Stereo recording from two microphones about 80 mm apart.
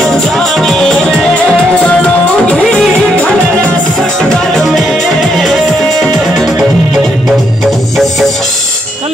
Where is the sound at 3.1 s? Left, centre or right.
Centre.